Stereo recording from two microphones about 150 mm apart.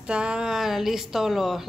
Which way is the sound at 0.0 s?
5° right (ahead or behind).